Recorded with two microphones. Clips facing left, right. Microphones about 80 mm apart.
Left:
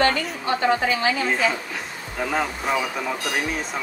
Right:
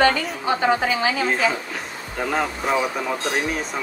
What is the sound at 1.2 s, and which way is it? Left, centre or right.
Speech, centre.